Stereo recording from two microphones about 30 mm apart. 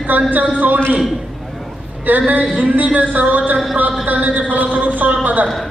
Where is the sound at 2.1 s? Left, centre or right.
Right.